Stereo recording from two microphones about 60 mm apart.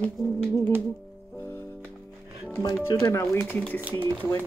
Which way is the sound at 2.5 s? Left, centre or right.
Left.